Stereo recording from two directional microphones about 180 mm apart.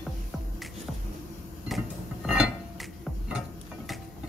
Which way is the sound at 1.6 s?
Centre (ahead or behind).